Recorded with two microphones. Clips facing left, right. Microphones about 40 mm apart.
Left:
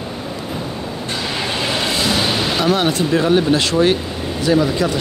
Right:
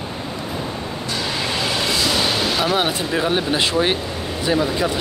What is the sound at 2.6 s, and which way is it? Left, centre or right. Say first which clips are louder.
Speech: left 3 dB; centre.